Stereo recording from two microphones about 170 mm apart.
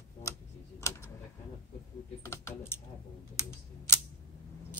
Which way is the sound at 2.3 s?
15° left (ahead or behind).